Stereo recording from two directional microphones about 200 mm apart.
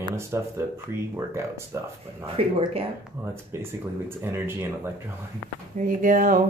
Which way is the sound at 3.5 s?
15° right (ahead or behind).